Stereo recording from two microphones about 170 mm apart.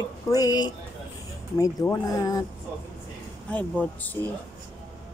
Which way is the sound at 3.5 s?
10° left (ahead or behind).